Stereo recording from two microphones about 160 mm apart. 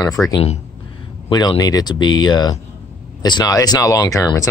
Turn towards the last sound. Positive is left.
turn(degrees=20)  # may be behind; listen again after turning